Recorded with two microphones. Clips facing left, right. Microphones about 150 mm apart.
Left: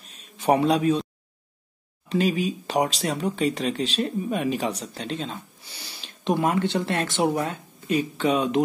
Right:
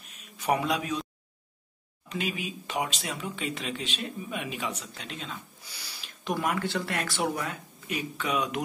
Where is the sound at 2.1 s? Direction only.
35° left (ahead or behind).